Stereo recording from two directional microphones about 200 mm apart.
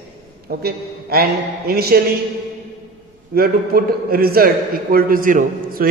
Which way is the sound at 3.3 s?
50° right (ahead or behind).